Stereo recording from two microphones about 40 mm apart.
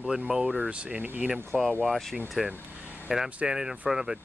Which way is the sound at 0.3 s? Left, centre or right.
Centre.